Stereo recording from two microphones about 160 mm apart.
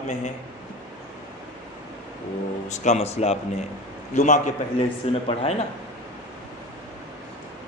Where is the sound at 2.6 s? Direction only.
45° left (ahead or behind).